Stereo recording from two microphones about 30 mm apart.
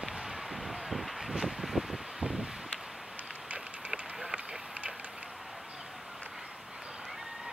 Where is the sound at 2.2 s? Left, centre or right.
Centre.